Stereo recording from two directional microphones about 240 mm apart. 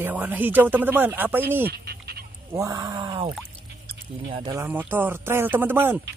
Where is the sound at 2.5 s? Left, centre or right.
Centre.